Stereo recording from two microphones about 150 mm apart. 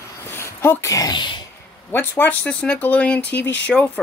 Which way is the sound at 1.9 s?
15° left (ahead or behind).